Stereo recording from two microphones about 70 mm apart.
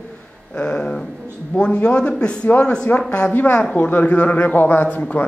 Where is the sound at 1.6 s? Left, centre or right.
Centre.